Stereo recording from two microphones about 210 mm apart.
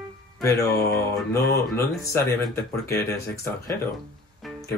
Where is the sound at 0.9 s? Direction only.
15° left (ahead or behind).